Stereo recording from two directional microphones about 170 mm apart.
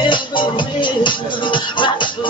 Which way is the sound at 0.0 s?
30° left (ahead or behind).